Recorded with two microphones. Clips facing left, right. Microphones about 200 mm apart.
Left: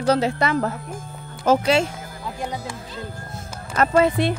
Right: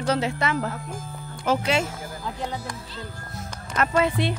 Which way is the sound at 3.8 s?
40° left (ahead or behind).